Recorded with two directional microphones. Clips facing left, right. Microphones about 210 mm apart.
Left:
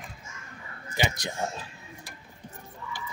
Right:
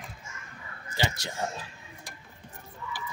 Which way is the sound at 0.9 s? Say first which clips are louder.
Left 2 dB; 15° left (ahead or behind).